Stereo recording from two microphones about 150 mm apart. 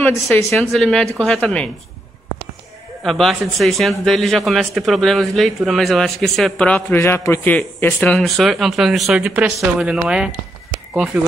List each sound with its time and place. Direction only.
0.0 s a man's voice: 15° left (ahead or behind)
0.5 s a man's voice: 5° left (ahead or behind)
3.0 s a man's voice: centre (ahead or behind)
7.0 s a man's voice: 20° left (ahead or behind); by 11.3 s 5° right (ahead or behind)